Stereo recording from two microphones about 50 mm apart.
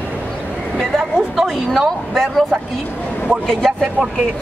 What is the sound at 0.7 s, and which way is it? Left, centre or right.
A woman's voice, centre.